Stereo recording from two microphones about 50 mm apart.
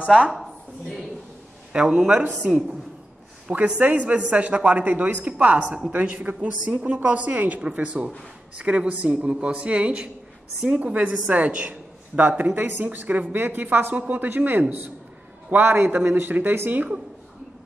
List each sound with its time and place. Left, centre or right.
0.3 s a sound: centre
1.7 s a man's voice: centre
6.6 s a woman's voice: centre
12.2 s a man's voice: right